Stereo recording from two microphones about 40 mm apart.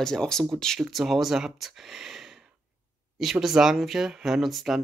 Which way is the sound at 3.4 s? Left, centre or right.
Centre.